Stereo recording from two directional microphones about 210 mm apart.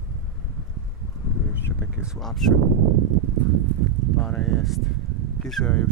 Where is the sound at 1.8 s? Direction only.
5° right (ahead or behind).